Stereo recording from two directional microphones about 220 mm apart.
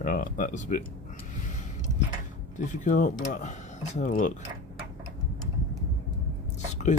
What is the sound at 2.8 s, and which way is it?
Speech, 35° left (ahead or behind).